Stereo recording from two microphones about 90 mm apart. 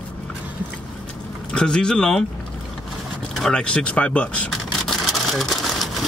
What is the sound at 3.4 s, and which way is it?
Speech, 10° left (ahead or behind).